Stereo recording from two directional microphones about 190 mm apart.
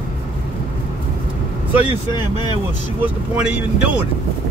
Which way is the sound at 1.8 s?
25° left (ahead or behind).